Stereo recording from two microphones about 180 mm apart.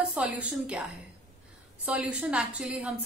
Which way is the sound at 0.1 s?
10° right (ahead or behind).